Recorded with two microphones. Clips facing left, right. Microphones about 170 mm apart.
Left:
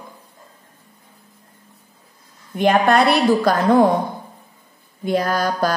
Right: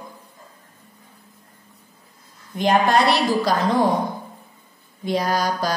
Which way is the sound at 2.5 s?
60° left (ahead or behind).